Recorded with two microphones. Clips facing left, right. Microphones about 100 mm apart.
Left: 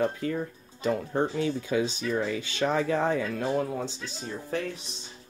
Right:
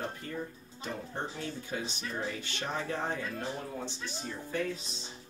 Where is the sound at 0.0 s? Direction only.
90° left.